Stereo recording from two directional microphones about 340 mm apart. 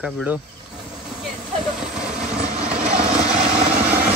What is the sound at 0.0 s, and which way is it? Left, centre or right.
Speech, centre.